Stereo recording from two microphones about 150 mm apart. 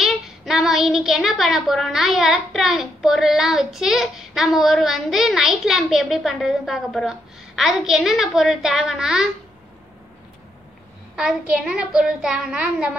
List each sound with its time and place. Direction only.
0.0 s a woman's voice: centre (ahead or behind)
11.1 s a woman's voice: 5° right (ahead or behind)